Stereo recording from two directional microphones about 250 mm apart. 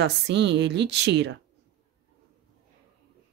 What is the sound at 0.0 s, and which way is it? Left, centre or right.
A woman's voice, right.